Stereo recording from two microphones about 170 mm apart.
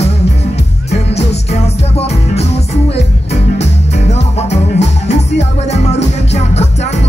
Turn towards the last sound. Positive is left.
turn(degrees=40)  # may be behind; listen again after turning